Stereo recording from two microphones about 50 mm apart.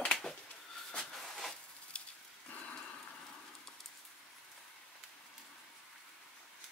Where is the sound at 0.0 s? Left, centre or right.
Centre.